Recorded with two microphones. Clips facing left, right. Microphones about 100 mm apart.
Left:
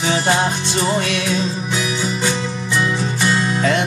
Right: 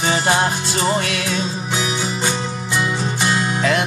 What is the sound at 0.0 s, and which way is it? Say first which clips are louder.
Music: even; 5° right (ahead or behind).